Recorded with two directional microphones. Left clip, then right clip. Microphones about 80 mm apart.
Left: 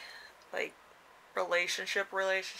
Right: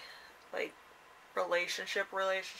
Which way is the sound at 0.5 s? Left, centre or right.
Left.